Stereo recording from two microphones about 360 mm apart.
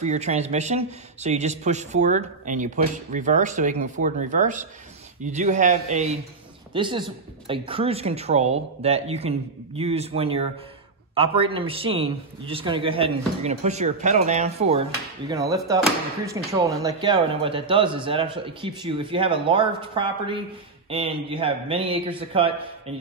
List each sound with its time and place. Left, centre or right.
0.0 s a man's voice: centre